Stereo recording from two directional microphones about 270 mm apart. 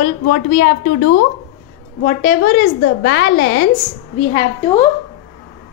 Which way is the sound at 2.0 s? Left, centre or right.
Left.